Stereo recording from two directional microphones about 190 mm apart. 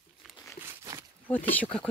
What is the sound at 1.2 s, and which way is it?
Speech, 10° left (ahead or behind).